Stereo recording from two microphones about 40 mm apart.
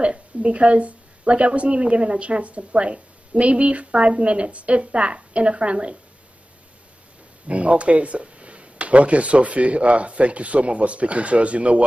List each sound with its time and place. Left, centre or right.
0.0 s speech: right
7.4 s speech: right